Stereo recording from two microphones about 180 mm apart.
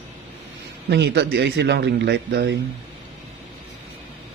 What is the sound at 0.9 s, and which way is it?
A man's voice, 70° right (ahead or behind).